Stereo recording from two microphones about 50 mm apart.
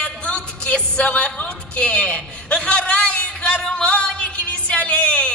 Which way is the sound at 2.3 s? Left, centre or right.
Left.